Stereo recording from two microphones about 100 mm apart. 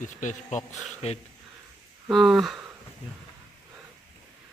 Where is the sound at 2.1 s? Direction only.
Centre (ahead or behind).